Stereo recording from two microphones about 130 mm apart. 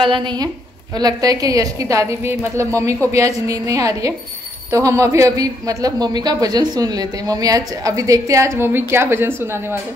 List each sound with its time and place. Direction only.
0.0 s a woman's voice: 40° right (ahead or behind); by 9.8 s 20° right (ahead or behind)